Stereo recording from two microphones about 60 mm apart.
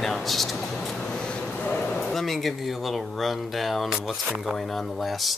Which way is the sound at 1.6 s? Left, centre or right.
Left.